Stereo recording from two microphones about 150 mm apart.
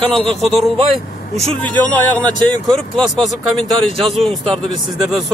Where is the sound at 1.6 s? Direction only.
10° left (ahead or behind).